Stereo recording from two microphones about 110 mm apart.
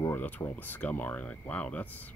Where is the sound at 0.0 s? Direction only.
20° left (ahead or behind).